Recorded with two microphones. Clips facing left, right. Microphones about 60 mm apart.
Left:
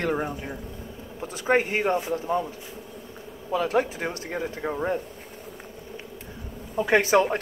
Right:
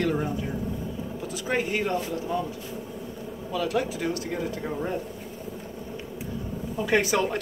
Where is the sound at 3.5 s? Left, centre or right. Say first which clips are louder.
Left 3 dB; left.